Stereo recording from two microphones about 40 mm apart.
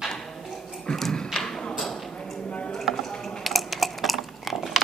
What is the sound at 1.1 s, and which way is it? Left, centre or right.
Thump, centre.